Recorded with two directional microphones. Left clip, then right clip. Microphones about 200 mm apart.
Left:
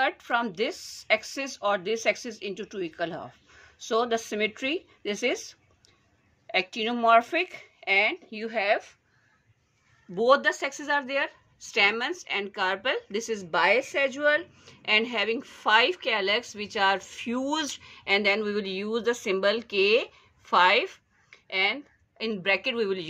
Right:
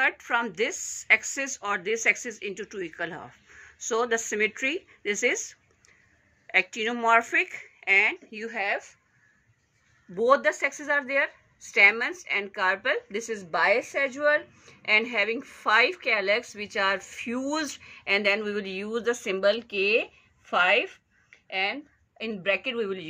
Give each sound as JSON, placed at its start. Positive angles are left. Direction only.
{"t": 0.0, "sound": "a woman's voice", "side_deg": 25}
{"t": 1.8, "sound": "speech", "side_deg": 40}
{"t": 2.1, "sound": "a woman's voice", "side_deg": 25}
{"t": 6.4, "sound": "a woman's voice", "side_deg": 25}
{"t": 10.1, "sound": "a woman's voice", "side_deg": 30}